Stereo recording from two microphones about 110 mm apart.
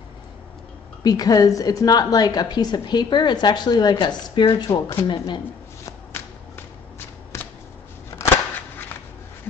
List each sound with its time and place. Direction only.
1.0 s a woman's voice: 35° left (ahead or behind)
5.9 s shuffling cards: 20° left (ahead or behind)